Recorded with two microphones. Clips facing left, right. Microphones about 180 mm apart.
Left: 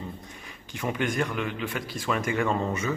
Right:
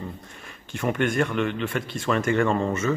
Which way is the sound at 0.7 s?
Centre (ahead or behind).